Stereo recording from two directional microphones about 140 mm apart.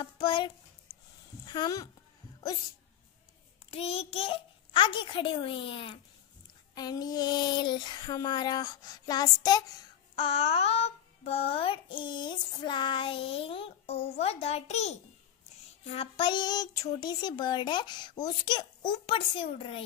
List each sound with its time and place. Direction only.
0.0 s a sound: 35° left (ahead or behind)
1.4 s a woman's voice: 30° left (ahead or behind)
3.7 s a child's voice: 45° left (ahead or behind)
6.7 s child singing: 30° left (ahead or behind)
10.1 s a child's voice: 40° left (ahead or behind)
15.9 s a child's voice: 40° left (ahead or behind)